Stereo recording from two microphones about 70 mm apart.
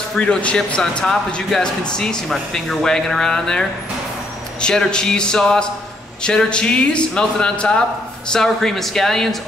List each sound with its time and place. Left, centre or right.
0.1 s speech: centre